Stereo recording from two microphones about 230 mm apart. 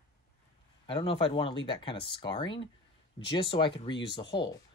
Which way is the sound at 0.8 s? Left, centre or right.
Left.